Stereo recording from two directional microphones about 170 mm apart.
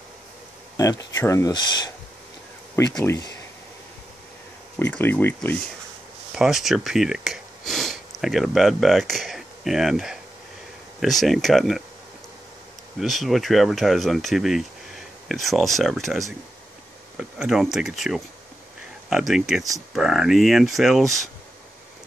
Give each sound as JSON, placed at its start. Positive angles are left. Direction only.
{"t": 0.7, "sound": "speech", "side_deg": 20}
{"t": 2.8, "sound": "speech", "side_deg": 15}
{"t": 4.7, "sound": "speech", "side_deg": 10}
{"t": 6.3, "sound": "speech", "side_deg": 0}
{"t": 13.0, "sound": "speech", "side_deg": 0}